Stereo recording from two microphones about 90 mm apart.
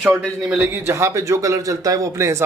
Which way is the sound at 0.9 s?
35° right (ahead or behind).